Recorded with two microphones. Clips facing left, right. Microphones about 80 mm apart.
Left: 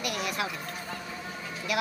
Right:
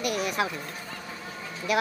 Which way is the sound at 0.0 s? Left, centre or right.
Right.